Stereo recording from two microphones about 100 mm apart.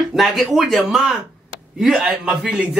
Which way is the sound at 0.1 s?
Centre (ahead or behind).